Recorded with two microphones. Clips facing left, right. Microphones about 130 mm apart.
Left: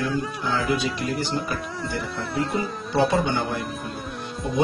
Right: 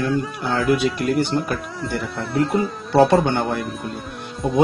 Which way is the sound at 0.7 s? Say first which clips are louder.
Right 6 dB; 65° right (ahead or behind).